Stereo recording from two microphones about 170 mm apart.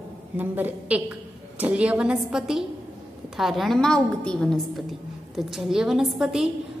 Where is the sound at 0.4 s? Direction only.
10° right (ahead or behind).